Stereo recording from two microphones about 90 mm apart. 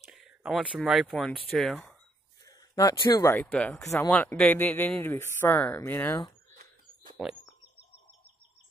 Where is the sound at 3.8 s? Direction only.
30° left (ahead or behind).